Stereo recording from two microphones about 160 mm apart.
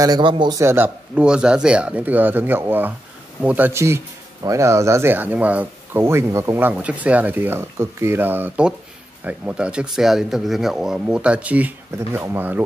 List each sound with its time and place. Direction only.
0.0 s speech: 25° right (ahead or behind)
0.6 s speech: 15° right (ahead or behind)